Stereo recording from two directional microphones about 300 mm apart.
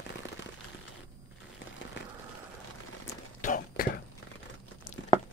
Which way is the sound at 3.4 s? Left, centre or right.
Left.